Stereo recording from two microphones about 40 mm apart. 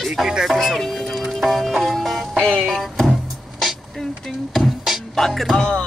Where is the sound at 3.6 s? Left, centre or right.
Centre.